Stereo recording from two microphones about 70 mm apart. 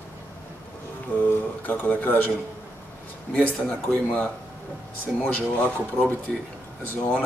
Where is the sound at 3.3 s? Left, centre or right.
Centre.